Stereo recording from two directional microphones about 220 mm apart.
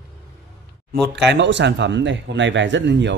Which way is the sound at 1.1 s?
50° right (ahead or behind).